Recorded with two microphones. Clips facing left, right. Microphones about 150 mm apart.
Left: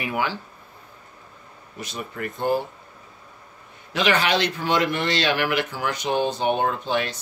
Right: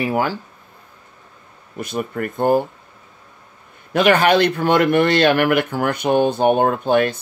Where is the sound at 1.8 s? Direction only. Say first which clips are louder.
Right 8 dB; 50° right (ahead or behind).